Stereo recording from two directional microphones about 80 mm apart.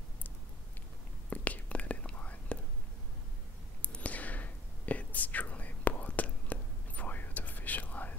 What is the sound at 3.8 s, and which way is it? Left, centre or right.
Whispering, centre.